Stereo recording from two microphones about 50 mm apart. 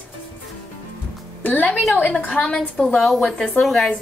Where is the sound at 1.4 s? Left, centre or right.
Left.